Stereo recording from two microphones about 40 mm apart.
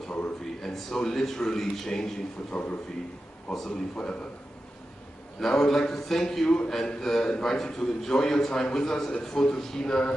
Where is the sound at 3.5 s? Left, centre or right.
Centre.